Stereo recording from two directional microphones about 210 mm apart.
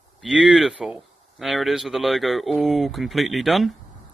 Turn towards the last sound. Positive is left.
turn(degrees=0)  # may be behind; listen again after turning